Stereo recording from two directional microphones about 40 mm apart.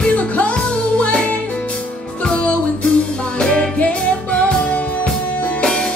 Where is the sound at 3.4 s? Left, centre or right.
Centre.